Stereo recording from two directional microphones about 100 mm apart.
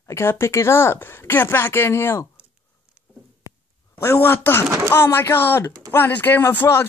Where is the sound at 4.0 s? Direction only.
25° left (ahead or behind).